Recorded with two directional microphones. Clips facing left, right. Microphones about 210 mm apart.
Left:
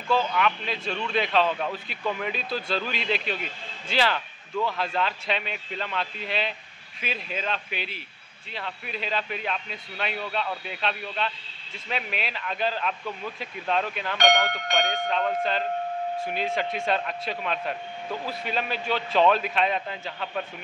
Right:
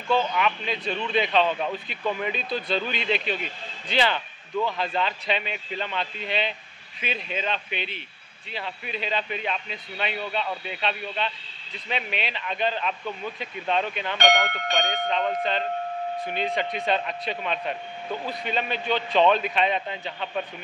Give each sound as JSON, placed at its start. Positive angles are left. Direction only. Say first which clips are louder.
{"t": 0.1, "sound": "a man's voice", "louder": "right 1 dB", "side_deg": 0}